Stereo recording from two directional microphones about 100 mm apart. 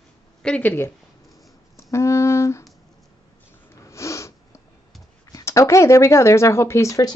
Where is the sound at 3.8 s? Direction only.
30° left (ahead or behind).